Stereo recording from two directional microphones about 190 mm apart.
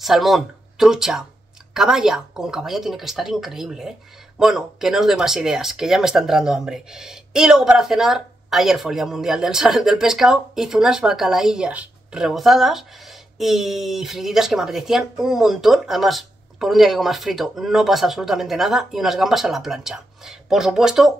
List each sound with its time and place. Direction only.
0.0 s speech: centre (ahead or behind)